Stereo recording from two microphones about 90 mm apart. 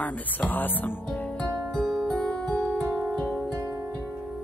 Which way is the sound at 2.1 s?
10° left (ahead or behind).